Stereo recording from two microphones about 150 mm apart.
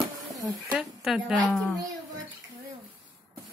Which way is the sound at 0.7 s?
Centre (ahead or behind).